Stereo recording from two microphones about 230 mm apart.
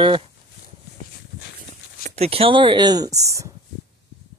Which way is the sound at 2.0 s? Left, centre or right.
Right.